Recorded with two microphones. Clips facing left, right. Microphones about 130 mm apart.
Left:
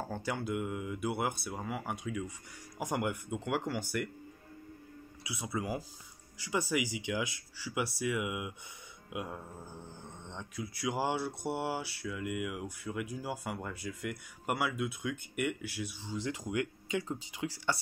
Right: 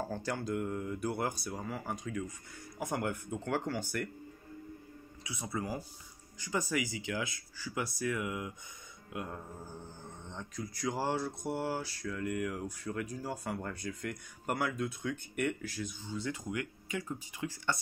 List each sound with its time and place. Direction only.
0.1 s speech: 10° left (ahead or behind)
5.2 s speech: 10° left (ahead or behind)